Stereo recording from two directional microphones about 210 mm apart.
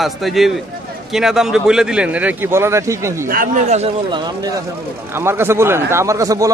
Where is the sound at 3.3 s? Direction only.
40° right (ahead or behind).